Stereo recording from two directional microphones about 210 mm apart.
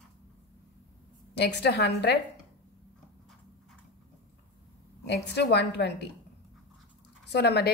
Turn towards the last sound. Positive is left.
turn(degrees=50)  # may be behind; listen again after turning